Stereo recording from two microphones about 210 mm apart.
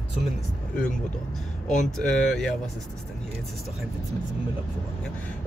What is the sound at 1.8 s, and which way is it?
Speech, centre (ahead or behind).